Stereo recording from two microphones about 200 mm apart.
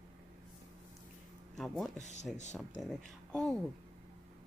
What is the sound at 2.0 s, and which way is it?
Speech, 35° left (ahead or behind).